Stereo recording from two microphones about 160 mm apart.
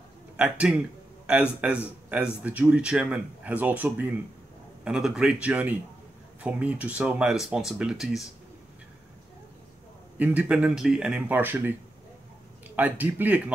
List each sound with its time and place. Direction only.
0.4 s a man's voice: 5° right (ahead or behind)
10.1 s speech: 10° right (ahead or behind)
12.7 s speech: 10° right (ahead or behind)